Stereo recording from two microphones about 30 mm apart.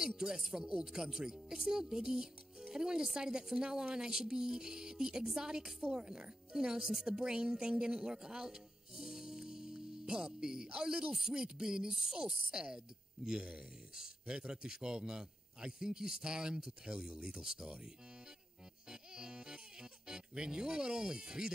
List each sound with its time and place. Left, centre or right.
0.0 s music: centre
0.7 s speech: right
18.9 s music: right